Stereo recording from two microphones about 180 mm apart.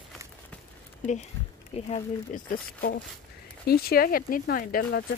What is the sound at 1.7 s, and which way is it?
Speech, 40° left (ahead or behind).